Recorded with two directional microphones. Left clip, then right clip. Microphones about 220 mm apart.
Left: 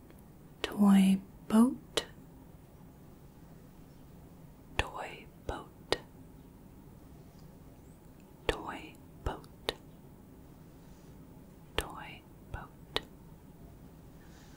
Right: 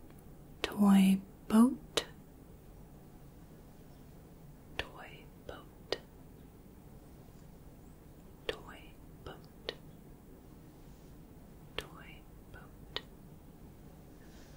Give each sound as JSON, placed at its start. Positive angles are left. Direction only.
{"t": 0.6, "sound": "whispering", "side_deg": 0}
{"t": 4.7, "sound": "whispering", "side_deg": 30}
{"t": 8.5, "sound": "whispering", "side_deg": 30}
{"t": 11.7, "sound": "whispering", "side_deg": 25}